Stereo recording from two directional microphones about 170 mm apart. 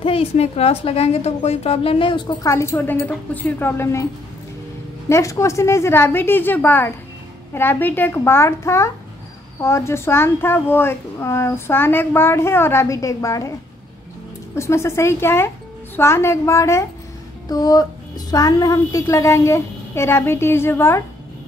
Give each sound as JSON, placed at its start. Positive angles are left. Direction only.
{"t": 0.0, "sound": "a woman's voice", "side_deg": 35}
{"t": 2.5, "sound": "a child's voice", "side_deg": 15}
{"t": 5.1, "sound": "a child's voice", "side_deg": 15}
{"t": 14.5, "sound": "a child's voice", "side_deg": 15}